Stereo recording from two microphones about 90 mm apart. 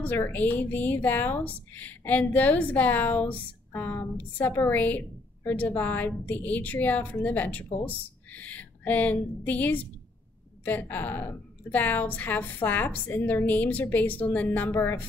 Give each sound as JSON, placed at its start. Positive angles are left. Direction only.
{"t": 0.0, "sound": "a woman's voice", "side_deg": 20}